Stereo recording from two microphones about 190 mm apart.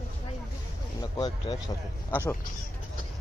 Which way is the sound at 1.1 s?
20° left (ahead or behind).